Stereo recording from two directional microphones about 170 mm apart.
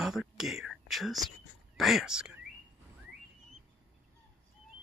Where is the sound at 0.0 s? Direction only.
5° right (ahead or behind).